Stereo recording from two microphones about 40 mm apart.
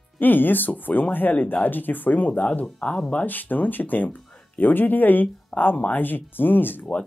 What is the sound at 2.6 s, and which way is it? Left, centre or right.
Speech, left.